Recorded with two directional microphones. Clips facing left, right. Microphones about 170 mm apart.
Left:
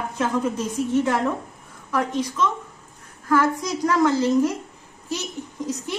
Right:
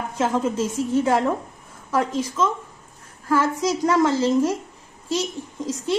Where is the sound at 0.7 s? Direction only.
30° right (ahead or behind).